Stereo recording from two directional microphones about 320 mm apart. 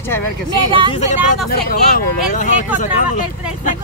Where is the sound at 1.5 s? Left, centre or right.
Left.